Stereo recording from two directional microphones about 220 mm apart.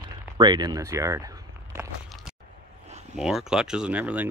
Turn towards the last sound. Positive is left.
turn(degrees=-5)  # may be behind; listen again after turning